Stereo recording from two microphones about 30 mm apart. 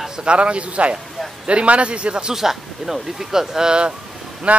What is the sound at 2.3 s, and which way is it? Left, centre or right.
Speech, centre.